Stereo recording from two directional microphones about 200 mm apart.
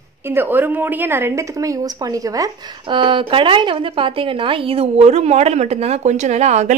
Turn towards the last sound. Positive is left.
turn(degrees=-35)  # may be behind; listen again after turning